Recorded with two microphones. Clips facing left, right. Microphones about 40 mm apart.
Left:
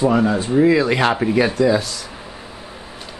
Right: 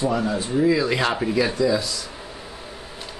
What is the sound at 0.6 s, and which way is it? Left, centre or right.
Speech, left.